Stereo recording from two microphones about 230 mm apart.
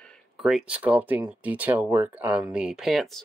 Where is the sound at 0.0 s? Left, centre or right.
Centre.